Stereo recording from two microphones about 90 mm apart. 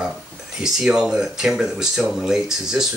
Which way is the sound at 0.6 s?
10° right (ahead or behind).